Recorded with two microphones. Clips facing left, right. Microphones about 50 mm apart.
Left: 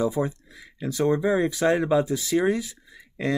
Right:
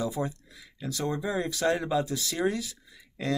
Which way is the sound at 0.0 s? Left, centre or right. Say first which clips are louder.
Left 6 dB; left.